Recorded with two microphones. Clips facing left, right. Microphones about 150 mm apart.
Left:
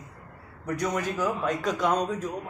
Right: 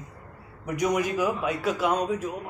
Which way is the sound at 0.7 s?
15° right (ahead or behind).